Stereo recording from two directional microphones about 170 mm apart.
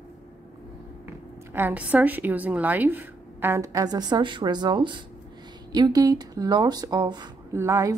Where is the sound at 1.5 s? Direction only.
10° right (ahead or behind).